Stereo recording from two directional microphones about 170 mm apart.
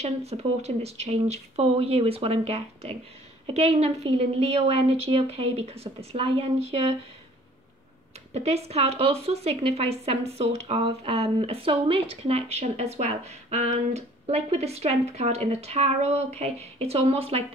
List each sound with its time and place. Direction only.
0.0 s speech: 35° right (ahead or behind)
8.3 s speech: 40° right (ahead or behind)